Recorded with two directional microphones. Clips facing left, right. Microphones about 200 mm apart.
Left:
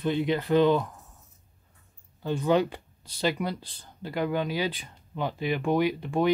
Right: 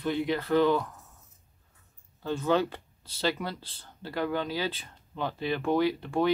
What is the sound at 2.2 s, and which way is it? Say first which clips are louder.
Speech: left 2 dB; 15° left (ahead or behind).